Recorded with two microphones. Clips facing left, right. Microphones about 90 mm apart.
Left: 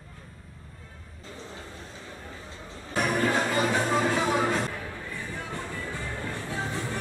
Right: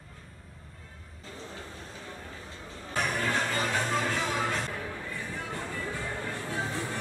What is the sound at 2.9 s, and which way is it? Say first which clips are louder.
Music: left 4 dB; 15° left (ahead or behind).